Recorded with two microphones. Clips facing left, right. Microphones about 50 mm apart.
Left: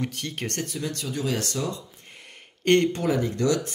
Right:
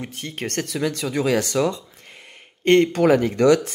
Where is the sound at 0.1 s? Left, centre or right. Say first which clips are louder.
Right 2 dB; right.